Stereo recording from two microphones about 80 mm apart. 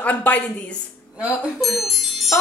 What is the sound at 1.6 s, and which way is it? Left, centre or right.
Chime, centre.